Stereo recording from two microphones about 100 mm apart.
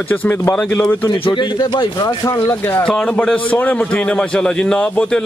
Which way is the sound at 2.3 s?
25° left (ahead or behind).